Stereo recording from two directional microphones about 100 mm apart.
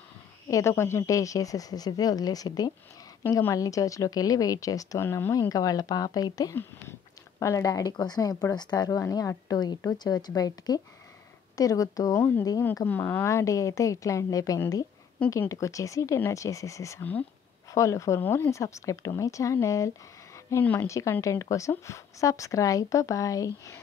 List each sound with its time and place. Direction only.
0.5 s a woman's voice: 30° left (ahead or behind)
5.3 s a woman's voice: 35° left (ahead or behind)
6.5 s a woman's voice: 25° left (ahead or behind)
12.8 s a woman's voice: 20° left (ahead or behind)